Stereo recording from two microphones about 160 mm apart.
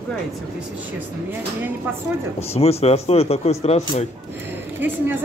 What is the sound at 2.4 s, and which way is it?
Speech, 40° left (ahead or behind).